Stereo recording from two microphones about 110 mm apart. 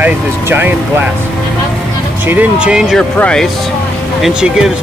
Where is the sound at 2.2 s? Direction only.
15° right (ahead or behind).